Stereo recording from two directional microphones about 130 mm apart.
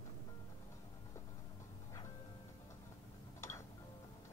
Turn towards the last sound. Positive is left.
turn(degrees=20)  # may be behind; listen again after turning